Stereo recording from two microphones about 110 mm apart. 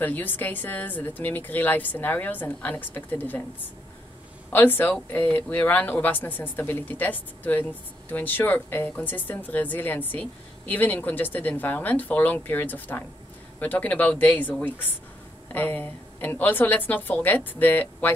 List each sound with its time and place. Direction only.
0.0 s a man's voice: 15° left (ahead or behind)